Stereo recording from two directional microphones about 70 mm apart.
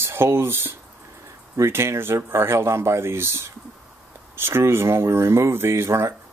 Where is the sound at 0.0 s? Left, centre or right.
Right.